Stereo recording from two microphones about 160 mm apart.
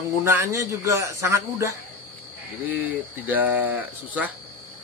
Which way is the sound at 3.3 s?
10° right (ahead or behind).